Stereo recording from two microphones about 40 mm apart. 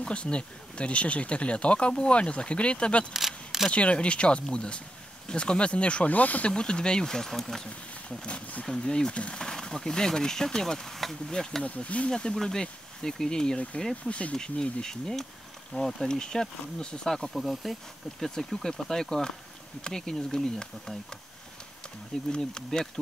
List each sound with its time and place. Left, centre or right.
0.1 s speech: left
3.1 s single-lens reflex camera: centre
3.7 s speech: left
6.1 s speech: left
6.4 s speech: left; by 7.6 s centre
8.2 s speech: left
9.1 s speech: left
9.4 s speech: centre
11.6 s speech: left
12.1 s speech: left
14.0 s speech: left
14.3 s speech: centre
17.3 s speech: centre
22.1 s speech: centre